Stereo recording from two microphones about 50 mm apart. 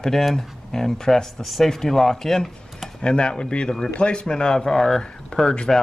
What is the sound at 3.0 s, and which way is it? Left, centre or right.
Speech, centre.